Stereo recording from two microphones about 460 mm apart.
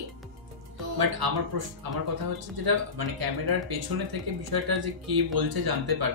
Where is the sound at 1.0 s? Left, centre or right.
Right.